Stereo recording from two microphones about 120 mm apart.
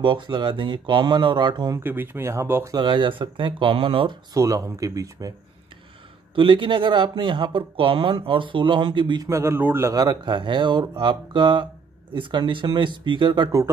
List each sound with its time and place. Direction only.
0.0 s speech: 40° right (ahead or behind)
1.8 s speech: 20° right (ahead or behind)
2.7 s speech: 45° right (ahead or behind)
4.3 s speech: 30° right (ahead or behind)
6.3 s speech: 45° right (ahead or behind)
9.3 s speech: 20° right (ahead or behind)
9.9 s speech: 40° right (ahead or behind)